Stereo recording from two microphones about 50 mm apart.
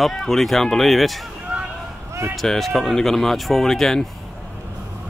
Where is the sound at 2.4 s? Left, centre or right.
Centre.